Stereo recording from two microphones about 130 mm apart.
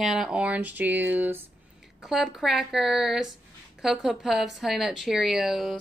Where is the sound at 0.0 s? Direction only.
Centre (ahead or behind).